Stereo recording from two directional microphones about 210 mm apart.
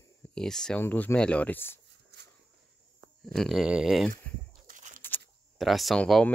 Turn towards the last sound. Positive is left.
turn(degrees=5)  # may be behind; listen again after turning